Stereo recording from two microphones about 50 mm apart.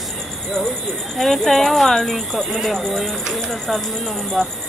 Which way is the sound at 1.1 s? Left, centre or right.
Centre.